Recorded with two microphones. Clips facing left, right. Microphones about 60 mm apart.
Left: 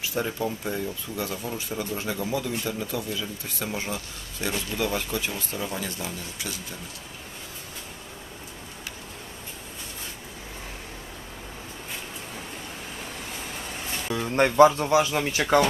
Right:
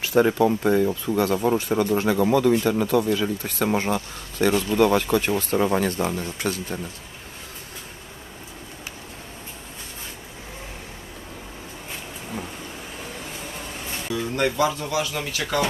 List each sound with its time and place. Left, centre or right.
0.0 s speech: right
14.1 s speech: left